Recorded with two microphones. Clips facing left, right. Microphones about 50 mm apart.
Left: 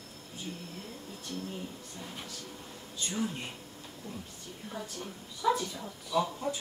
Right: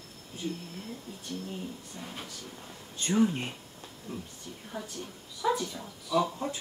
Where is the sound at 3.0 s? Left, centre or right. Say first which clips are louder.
Right 8 dB; right.